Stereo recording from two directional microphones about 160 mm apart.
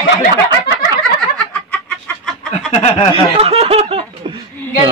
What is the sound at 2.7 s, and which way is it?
Snicker, 35° left (ahead or behind).